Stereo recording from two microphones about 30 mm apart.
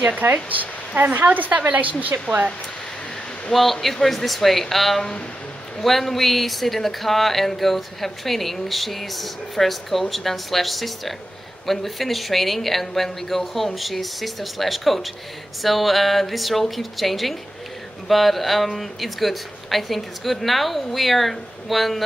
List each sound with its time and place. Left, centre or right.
0.2 s speech: right
3.5 s speech: centre